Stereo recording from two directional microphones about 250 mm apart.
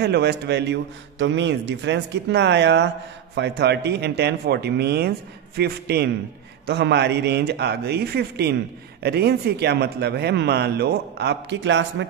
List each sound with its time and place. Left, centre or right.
0.0 s a man's voice: right